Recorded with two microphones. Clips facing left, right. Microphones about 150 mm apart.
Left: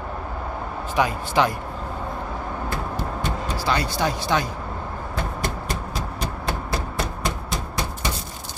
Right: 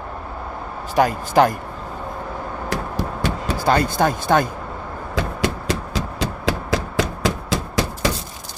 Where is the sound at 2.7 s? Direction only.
85° right.